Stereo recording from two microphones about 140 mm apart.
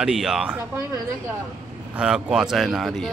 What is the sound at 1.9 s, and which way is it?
Speech, 5° right (ahead or behind).